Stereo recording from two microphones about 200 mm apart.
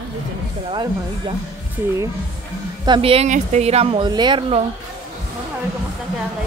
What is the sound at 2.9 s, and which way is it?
A woman's voice, 30° right (ahead or behind).